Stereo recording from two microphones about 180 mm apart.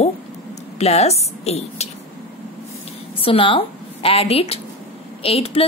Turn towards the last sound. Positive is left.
turn(degrees=35)  # may be behind; listen again after turning